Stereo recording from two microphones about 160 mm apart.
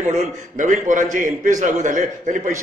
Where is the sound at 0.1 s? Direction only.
50° right (ahead or behind).